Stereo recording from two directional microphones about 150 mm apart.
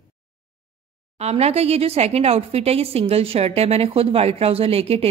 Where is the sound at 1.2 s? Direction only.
45° right (ahead or behind).